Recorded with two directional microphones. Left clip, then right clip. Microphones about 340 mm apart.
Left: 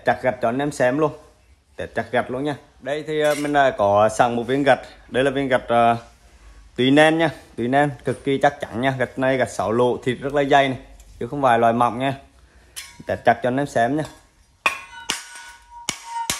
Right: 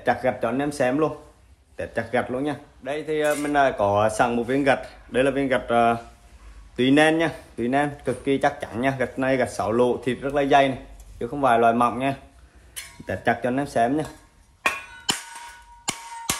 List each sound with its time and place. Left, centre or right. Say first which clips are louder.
0.0 s speech: left 3 dB; left